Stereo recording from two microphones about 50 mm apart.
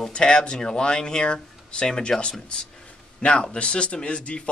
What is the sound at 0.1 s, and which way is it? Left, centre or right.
A man's voice, centre.